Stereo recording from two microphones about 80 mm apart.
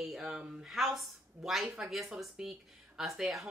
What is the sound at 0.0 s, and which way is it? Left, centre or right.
Speech, centre.